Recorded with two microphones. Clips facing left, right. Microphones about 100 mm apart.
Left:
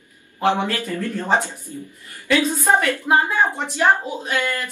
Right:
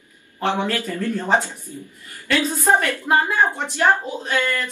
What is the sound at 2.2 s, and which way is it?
A woman's voice, 5° left (ahead or behind).